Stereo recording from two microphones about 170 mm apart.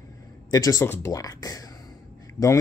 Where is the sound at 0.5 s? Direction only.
20° left (ahead or behind).